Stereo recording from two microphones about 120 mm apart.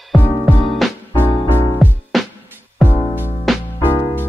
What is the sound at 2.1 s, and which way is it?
Music, centre (ahead or behind).